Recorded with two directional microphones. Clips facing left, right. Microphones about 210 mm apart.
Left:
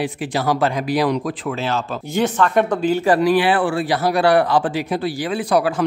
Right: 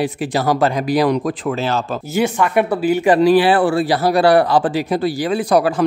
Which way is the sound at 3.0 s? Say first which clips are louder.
Right 5 dB; 20° right (ahead or behind).